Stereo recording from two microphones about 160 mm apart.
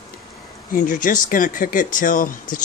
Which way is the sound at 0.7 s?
55° left (ahead or behind).